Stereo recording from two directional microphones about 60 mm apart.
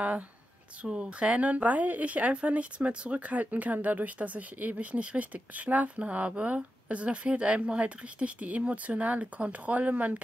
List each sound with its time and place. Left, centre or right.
0.8 s a woman's voice: centre